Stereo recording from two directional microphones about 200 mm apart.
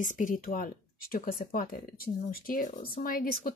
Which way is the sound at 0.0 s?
40° left (ahead or behind).